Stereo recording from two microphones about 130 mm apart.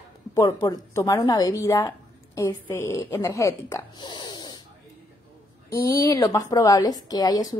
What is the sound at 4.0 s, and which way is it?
Snort, 35° left (ahead or behind).